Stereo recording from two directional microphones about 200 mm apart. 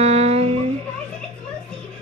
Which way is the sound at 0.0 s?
30° right (ahead or behind).